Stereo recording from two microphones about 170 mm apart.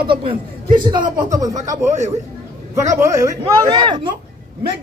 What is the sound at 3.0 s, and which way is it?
A man's voice, 20° right (ahead or behind).